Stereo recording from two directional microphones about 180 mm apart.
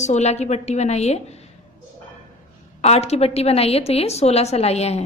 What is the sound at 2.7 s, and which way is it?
A woman's voice, 35° left (ahead or behind).